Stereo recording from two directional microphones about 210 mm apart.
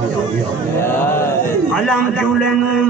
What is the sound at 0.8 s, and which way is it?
A man's voice, 10° left (ahead or behind).